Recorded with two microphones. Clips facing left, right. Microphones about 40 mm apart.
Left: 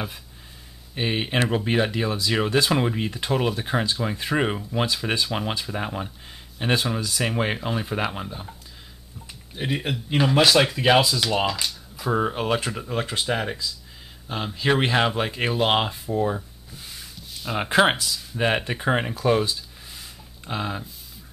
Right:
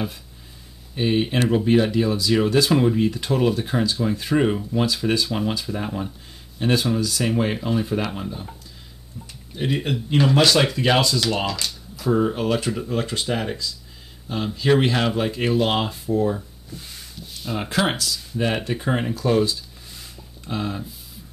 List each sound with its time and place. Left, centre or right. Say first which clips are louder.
0.9 s speech: right 3 dB; left
9.6 s speech: right 3 dB; centre
16.7 s a sound: right 2 dB; centre
17.6 s speech: left 4 dB; left
18.0 s speech: even; centre